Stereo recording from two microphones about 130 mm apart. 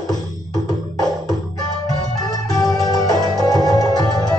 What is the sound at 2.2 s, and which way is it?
Music, 30° left (ahead or behind).